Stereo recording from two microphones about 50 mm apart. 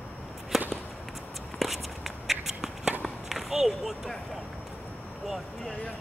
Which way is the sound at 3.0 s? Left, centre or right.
Centre.